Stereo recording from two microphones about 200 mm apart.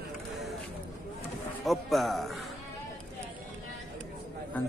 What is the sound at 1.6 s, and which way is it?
Speech, centre (ahead or behind).